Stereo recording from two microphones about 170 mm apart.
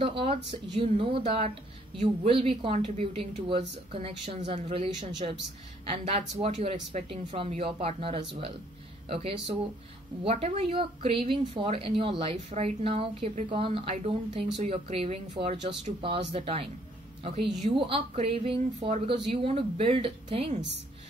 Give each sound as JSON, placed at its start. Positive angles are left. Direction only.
{"t": 0.0, "sound": "a woman's voice", "side_deg": -35}